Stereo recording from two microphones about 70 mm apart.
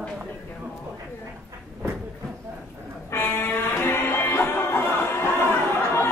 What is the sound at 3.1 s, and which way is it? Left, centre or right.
Music, left.